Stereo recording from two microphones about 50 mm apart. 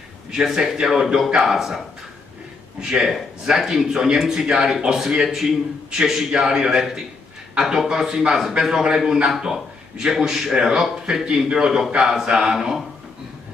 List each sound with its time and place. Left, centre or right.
0.6 s speech: centre
1.0 s a man's voice: centre
2.8 s speech: centre